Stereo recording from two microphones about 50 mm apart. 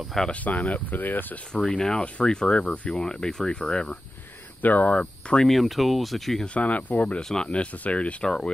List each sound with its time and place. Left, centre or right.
0.3 s speech: left
1.5 s speech: centre
2.9 s speech: centre
4.6 s speech: left
5.5 s speech: centre
6.4 s speech: left
7.2 s speech: centre
7.4 s speech: left